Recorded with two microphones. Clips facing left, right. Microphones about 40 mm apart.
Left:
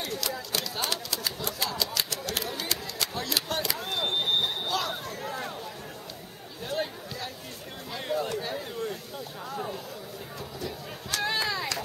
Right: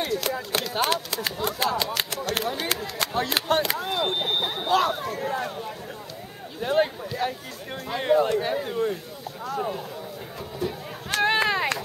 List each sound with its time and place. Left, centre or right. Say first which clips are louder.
0.0 s speech: right 6 dB; right
3.8 s speech: right 3 dB; centre
4.6 s speech: right 8 dB; right
6.6 s speech: right 9 dB; right
10.6 s a sound: right 9 dB; right